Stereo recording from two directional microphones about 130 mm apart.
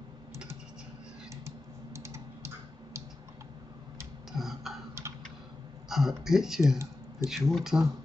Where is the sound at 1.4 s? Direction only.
20° right (ahead or behind).